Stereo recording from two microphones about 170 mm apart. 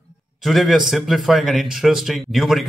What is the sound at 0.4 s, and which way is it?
Speech, centre (ahead or behind).